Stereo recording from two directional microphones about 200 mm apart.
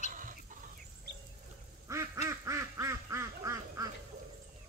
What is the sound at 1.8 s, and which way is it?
Quack, 15° right (ahead or behind).